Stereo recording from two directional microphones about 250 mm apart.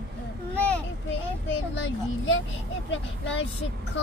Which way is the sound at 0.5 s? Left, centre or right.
Centre.